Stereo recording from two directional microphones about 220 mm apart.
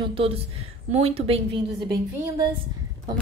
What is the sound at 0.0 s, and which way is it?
A woman's voice, 25° right (ahead or behind).